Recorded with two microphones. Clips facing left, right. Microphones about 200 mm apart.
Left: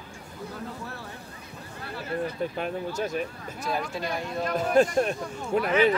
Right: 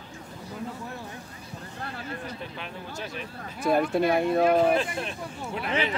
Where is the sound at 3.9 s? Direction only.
60° right (ahead or behind).